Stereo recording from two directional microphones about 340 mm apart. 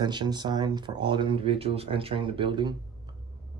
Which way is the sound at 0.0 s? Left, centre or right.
Centre.